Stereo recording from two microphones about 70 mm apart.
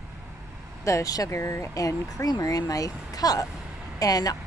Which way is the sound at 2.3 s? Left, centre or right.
Left.